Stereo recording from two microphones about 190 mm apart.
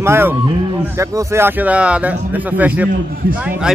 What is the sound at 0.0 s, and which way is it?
A man's voice, 10° right (ahead or behind).